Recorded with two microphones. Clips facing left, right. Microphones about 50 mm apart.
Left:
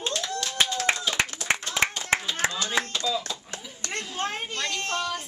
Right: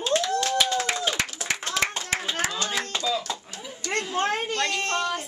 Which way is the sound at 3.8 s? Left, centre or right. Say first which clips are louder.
Right 6 dB; left.